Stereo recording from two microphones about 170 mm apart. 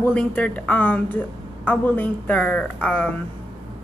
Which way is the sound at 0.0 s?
5° left (ahead or behind).